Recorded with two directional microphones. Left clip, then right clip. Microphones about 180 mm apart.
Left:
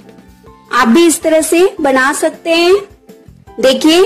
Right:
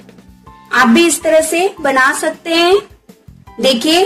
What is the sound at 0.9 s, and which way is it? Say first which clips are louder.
Speech: left 1 dB; 60° left (ahead or behind).